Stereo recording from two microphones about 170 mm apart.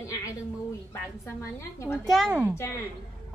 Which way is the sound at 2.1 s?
5° right (ahead or behind).